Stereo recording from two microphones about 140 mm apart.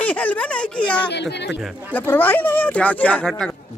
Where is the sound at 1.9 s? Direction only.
15° left (ahead or behind).